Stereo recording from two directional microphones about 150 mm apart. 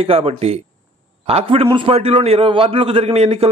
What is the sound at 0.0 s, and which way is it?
A man's voice, 40° right (ahead or behind).